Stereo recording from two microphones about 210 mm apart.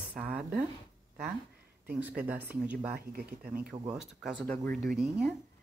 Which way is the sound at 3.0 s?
45° right (ahead or behind).